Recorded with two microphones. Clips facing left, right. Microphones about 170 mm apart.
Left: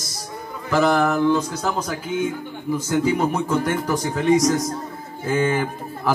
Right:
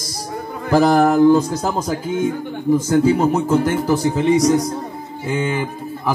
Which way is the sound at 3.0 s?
30° right (ahead or behind).